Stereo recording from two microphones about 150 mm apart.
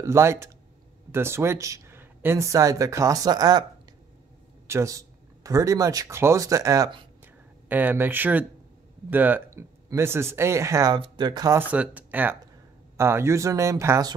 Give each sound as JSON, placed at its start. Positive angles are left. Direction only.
{"t": 0.0, "sound": "speech", "side_deg": -20}
{"t": 4.6, "sound": "speech", "side_deg": -20}
{"t": 7.6, "sound": "speech", "side_deg": -10}
{"t": 11.7, "sound": "speech", "side_deg": -10}